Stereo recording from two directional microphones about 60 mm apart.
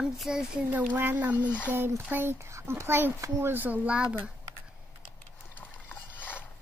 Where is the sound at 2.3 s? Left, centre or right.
Right.